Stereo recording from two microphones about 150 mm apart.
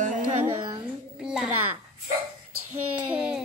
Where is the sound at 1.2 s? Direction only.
5° right (ahead or behind).